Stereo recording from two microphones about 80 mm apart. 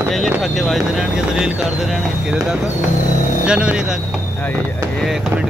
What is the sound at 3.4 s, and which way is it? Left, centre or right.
Speech, centre.